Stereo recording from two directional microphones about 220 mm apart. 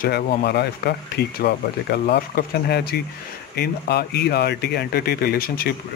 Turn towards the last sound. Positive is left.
turn(degrees=45)  # may be behind; listen again after turning